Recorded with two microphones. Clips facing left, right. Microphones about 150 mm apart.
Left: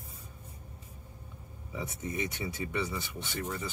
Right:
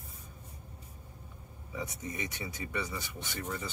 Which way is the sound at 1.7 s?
25° left (ahead or behind).